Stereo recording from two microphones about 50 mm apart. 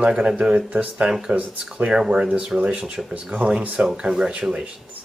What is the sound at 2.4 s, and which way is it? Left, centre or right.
Speech, right.